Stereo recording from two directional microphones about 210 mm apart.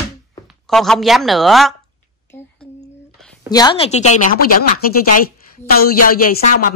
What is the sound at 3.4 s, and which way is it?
Speech, 20° left (ahead or behind).